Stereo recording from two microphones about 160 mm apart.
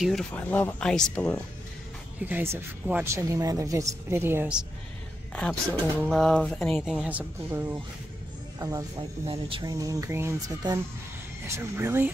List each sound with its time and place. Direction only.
0.3 s speech: 10° left (ahead or behind)
2.1 s speech: 10° right (ahead or behind)
5.3 s speech: 5° left (ahead or behind); by 7.8 s 10° right (ahead or behind)
8.5 s speech: 25° right (ahead or behind)
9.2 s speech: 35° right (ahead or behind); by 12.1 s 15° right (ahead or behind)